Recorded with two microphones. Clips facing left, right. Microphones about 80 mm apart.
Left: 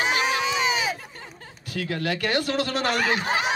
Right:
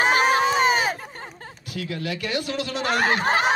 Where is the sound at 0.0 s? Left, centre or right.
Right.